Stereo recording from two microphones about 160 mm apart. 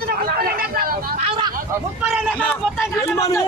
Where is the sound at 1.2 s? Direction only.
35° right (ahead or behind).